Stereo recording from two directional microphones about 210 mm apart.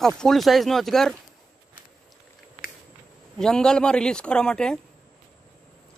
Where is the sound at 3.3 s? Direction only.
5° left (ahead or behind).